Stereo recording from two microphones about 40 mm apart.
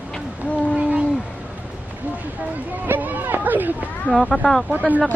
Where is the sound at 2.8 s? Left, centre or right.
Right.